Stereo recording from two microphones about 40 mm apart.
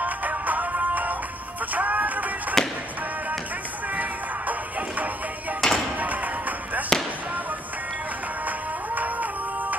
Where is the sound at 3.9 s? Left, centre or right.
Right.